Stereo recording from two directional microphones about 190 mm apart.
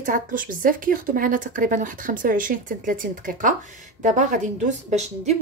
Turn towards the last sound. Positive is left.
turn(degrees=-35)  # may be behind; listen again after turning